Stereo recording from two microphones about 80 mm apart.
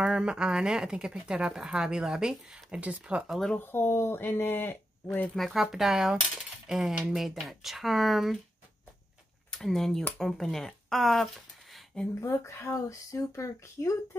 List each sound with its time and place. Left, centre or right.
0.0 s speech: centre
3.3 s speech: centre
3.5 s speech: left
5.3 s speech: centre
9.5 s speech: centre
12.2 s speech: left